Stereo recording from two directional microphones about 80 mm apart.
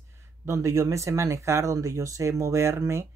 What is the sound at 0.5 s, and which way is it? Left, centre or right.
Speech, right.